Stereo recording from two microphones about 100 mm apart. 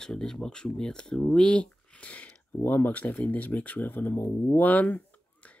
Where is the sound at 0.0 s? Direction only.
5° left (ahead or behind).